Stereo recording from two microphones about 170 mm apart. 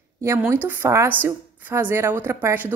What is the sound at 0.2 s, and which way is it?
A woman's voice, 15° right (ahead or behind).